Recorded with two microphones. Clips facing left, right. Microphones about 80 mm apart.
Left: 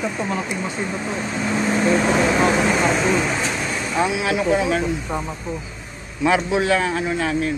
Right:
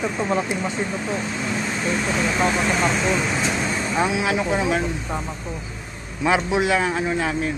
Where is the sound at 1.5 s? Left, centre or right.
Left.